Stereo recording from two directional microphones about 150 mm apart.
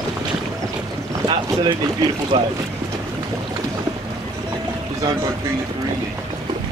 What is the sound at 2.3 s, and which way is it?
Speech, 35° right (ahead or behind).